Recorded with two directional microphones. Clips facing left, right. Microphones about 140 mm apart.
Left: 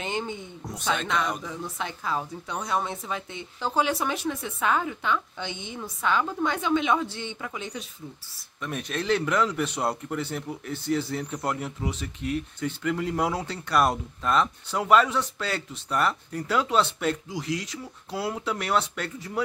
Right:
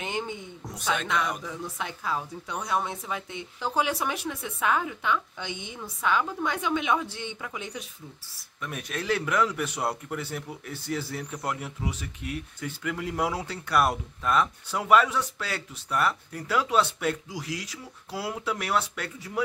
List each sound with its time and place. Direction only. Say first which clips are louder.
0.0 s a sound: left 1 dB; 10° right (ahead or behind)
0.8 s speech: left 1 dB; 10° right (ahead or behind)
11.2 s speech: left 3 dB; 25° left (ahead or behind)
11.6 s speech: left 3 dB; 10° right (ahead or behind)